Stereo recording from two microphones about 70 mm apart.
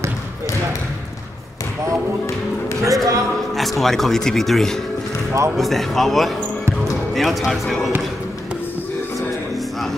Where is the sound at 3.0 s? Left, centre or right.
Right.